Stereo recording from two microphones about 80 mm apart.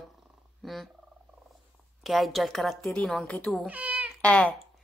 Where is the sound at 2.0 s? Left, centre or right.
Centre.